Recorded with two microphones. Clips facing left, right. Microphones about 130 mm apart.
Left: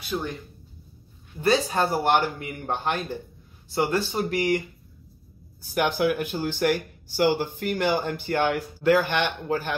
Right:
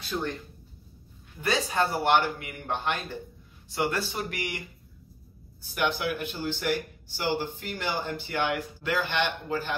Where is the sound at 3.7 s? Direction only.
30° left (ahead or behind).